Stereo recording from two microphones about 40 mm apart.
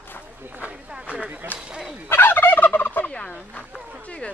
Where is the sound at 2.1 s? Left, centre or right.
Left.